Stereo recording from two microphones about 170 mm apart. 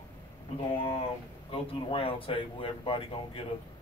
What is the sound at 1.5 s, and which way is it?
Speech, 30° left (ahead or behind).